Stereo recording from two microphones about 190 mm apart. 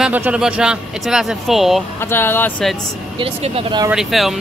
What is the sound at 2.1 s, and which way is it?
Speech, 10° left (ahead or behind).